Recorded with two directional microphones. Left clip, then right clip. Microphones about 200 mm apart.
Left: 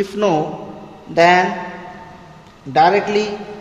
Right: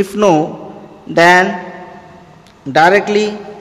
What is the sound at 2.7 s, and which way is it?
Speech, 40° right (ahead or behind).